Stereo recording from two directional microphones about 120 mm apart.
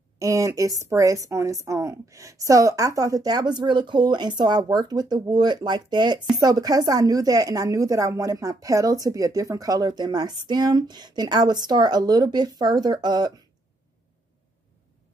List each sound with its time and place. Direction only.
0.2 s a woman's voice: 25° right (ahead or behind)